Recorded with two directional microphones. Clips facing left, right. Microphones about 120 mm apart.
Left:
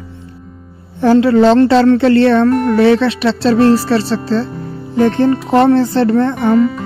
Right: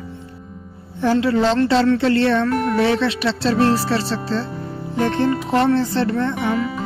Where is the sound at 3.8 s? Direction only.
65° left (ahead or behind).